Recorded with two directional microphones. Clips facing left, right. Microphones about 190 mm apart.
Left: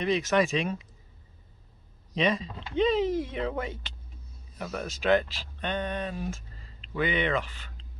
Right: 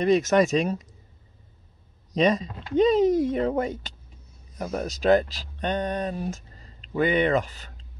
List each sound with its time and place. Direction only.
0.0 s speech: 45° right (ahead or behind)
2.1 s speech: 40° right (ahead or behind)